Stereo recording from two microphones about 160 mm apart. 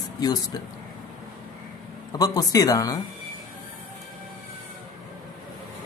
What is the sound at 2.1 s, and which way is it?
Speech, 20° left (ahead or behind).